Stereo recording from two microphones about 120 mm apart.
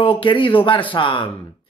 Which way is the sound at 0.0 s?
45° left (ahead or behind).